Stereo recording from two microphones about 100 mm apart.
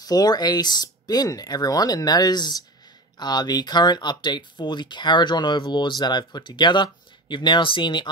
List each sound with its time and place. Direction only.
0.0 s speech: 40° left (ahead or behind)